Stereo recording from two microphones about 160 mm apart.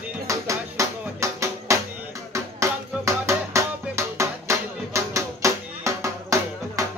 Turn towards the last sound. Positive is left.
turn(degrees=-20)  # may be behind; listen again after turning